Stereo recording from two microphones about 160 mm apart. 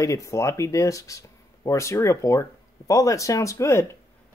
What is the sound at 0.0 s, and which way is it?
Speech, 20° left (ahead or behind).